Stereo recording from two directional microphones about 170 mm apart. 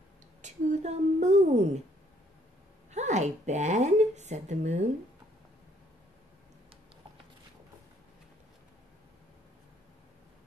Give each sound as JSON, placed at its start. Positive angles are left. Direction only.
{"t": 0.4, "sound": "a woman's voice", "side_deg": -45}
{"t": 2.9, "sound": "speech", "side_deg": -45}